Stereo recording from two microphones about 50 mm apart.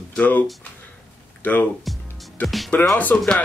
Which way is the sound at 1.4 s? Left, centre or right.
Left.